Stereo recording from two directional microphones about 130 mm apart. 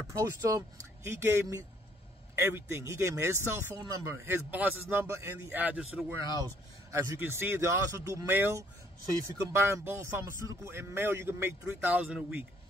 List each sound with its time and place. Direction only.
0.1 s speech: 25° right (ahead or behind); by 6.1 s 5° right (ahead or behind)
6.4 s speech: 20° right (ahead or behind)